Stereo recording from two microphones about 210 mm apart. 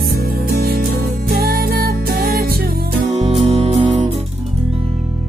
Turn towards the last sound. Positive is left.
turn(degrees=-30)  # may be behind; listen again after turning